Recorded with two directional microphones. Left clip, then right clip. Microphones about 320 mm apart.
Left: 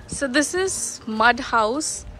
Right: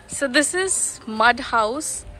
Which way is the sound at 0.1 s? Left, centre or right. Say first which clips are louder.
Right 2 dB; centre.